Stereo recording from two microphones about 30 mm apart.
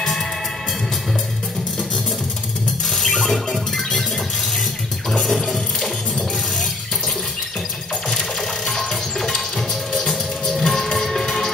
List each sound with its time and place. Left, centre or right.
3.1 s music: centre
5.2 s a sound: centre
8.6 s music: centre